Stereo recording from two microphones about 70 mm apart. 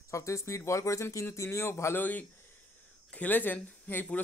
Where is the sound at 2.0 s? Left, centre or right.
Left.